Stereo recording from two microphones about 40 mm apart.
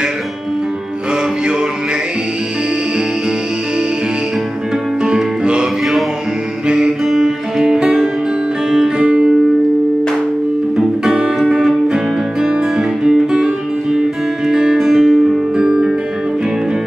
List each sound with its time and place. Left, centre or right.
5.0 s music: centre
7.1 s music: centre; by 9.3 s right
11.4 s music: centre
14.5 s music: centre